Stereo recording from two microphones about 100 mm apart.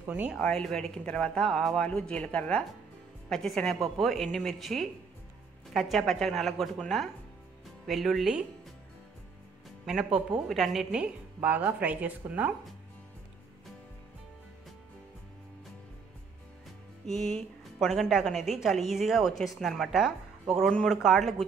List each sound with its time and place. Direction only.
0.0 s speech: 20° right (ahead or behind)
0.4 s a woman's voice: 10° left (ahead or behind)
7.8 s a woman's voice: centre (ahead or behind)
10.1 s a woman's voice: 5° right (ahead or behind)
17.0 s a woman's voice: 5° left (ahead or behind)